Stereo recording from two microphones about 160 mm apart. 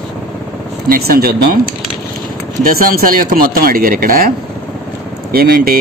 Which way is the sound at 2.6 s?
65° right (ahead or behind).